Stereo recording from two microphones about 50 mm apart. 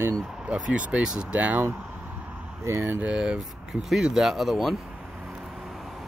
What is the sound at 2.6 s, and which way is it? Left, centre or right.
Speech, right.